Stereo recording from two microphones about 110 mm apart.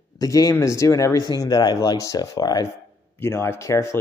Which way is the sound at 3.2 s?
20° left (ahead or behind).